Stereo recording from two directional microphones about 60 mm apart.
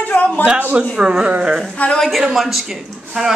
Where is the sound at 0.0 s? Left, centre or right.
Left.